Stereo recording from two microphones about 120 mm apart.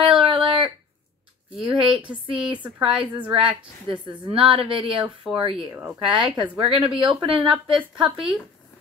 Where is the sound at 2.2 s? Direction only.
45° right (ahead or behind).